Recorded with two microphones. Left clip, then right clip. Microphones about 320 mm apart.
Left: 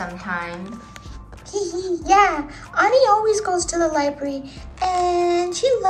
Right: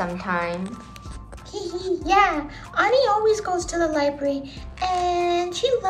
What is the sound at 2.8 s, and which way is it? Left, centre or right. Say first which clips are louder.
A child's voice: left 3 dB; centre.